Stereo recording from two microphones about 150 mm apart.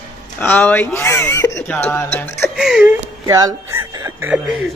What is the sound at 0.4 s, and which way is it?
Speech, 10° left (ahead or behind).